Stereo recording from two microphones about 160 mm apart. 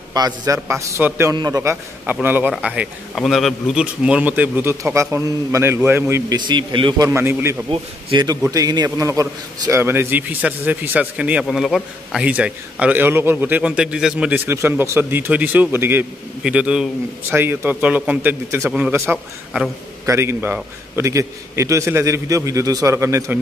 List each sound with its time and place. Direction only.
0.1 s a man's voice: 20° right (ahead or behind)
7.7 s a man's voice: 30° right (ahead or behind)